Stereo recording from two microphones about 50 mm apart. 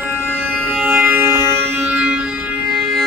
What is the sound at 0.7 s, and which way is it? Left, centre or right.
Music, right.